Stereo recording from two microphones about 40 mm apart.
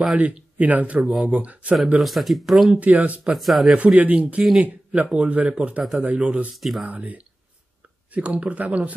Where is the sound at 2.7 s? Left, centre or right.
Right.